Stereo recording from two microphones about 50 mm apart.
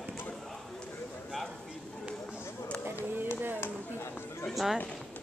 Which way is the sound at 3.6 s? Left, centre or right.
Left.